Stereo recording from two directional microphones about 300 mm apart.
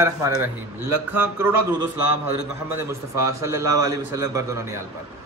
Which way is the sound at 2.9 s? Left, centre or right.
Centre.